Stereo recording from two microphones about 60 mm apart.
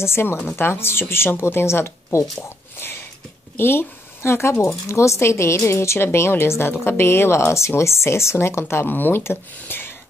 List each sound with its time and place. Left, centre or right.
0.0 s speech: left
3.5 s speech: left
8.8 s speech: left